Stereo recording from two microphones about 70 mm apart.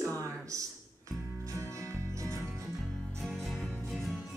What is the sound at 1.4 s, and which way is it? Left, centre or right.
Music, right.